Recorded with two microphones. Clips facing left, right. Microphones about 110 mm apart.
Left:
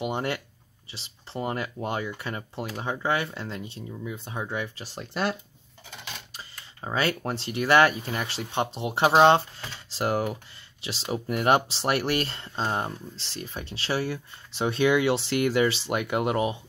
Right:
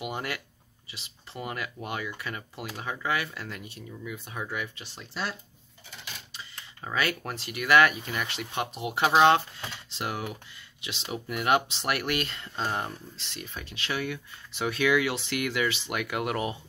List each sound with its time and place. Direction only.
0.0 s speech: 30° left (ahead or behind)
4.9 s speech: 55° left (ahead or behind)
6.8 s speech: 30° left (ahead or behind)